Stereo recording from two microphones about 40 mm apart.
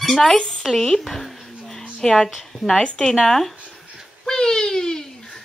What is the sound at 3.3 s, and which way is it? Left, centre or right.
Speech, centre.